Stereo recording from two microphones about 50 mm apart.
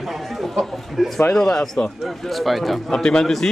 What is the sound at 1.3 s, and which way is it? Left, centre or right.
Speech, centre.